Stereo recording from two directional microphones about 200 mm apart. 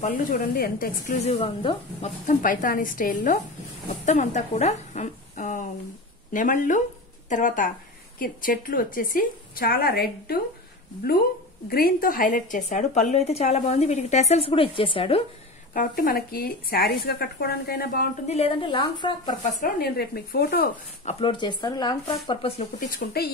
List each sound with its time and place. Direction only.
0.0 s a woman's voice: 45° left (ahead or behind)
11.7 s a woman's voice: 45° left (ahead or behind); by 15.2 s 25° left (ahead or behind)
15.7 s a woman's voice: 45° left (ahead or behind)
18.3 s speech: 25° left (ahead or behind)
19.6 s a woman's voice: 50° left (ahead or behind)
21.0 s speech: 30° left (ahead or behind)
22.8 s a woman's voice: 45° left (ahead or behind)